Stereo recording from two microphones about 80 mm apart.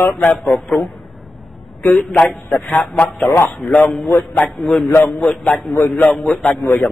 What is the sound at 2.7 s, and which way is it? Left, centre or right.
Speech, centre.